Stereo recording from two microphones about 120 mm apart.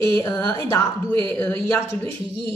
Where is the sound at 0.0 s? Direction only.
30° left (ahead or behind).